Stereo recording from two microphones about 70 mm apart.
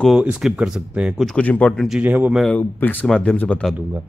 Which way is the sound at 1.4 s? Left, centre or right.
Left.